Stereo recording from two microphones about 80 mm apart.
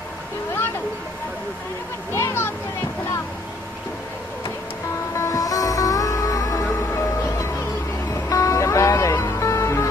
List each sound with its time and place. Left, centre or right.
2.1 s speech: left
5.1 s music: left